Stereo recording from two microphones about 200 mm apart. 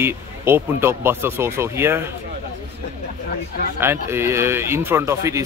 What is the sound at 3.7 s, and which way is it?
Speech, 10° right (ahead or behind).